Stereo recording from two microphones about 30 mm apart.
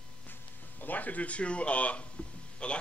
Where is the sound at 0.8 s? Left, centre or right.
Left.